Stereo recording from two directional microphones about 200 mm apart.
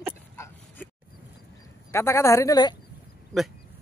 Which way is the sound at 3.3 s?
Centre (ahead or behind).